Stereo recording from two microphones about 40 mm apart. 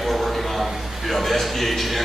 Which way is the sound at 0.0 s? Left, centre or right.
Centre.